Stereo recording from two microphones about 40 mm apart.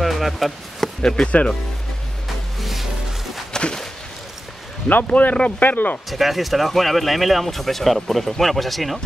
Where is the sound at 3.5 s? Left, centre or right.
Left.